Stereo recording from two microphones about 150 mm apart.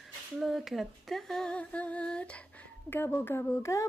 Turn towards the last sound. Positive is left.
turn(degrees=20)  # may be behind; listen again after turning